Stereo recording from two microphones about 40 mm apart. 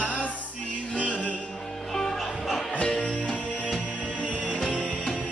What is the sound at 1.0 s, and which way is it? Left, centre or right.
Music, left.